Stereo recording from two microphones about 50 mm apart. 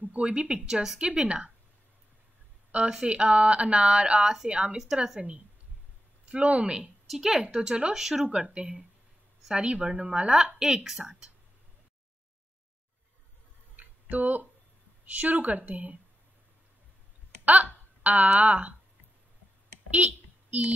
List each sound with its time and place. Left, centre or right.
0.0 s speech: right
2.7 s a woman's voice: right
6.2 s speech: right
7.1 s a woman's voice: centre
7.4 s speech: right
7.9 s a woman's voice: centre
8.3 s speech: centre
10.3 s a woman's voice: centre
13.7 s tick-tock: right
15.1 s speech: right
17.5 s speech: right
19.9 s a sound: right